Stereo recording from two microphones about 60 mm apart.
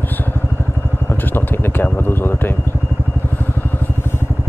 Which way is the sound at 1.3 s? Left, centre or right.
Left.